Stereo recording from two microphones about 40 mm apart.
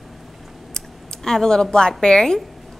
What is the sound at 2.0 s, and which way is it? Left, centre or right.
Speech, centre.